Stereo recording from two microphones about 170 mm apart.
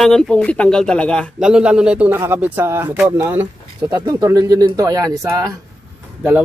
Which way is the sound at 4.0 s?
20° right (ahead or behind).